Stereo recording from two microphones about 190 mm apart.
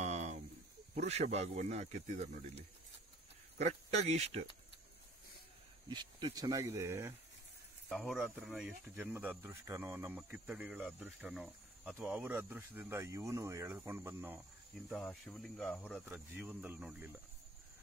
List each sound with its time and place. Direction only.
0.0 s a sound: 35° right (ahead or behind)
0.9 s speech: 35° right (ahead or behind)
5.9 s speech: 25° right (ahead or behind)
7.9 s speech: centre (ahead or behind)
14.9 s speech: centre (ahead or behind)
16.1 s speech: 10° right (ahead or behind)